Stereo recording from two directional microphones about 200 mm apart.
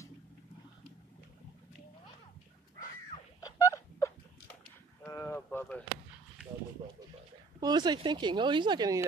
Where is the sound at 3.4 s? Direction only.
15° left (ahead or behind).